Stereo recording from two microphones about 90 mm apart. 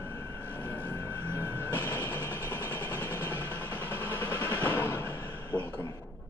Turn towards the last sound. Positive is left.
turn(degrees=20)  # may be behind; listen again after turning